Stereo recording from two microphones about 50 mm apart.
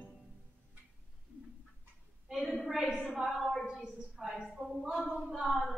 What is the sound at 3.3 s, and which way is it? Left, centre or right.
Female singing, centre.